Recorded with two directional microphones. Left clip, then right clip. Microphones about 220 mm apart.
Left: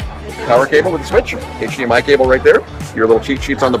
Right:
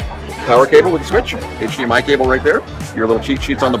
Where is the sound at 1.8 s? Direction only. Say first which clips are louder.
Left 3 dB; 20° left (ahead or behind).